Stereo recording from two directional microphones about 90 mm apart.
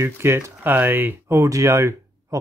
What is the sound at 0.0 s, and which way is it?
Speech, 30° right (ahead or behind).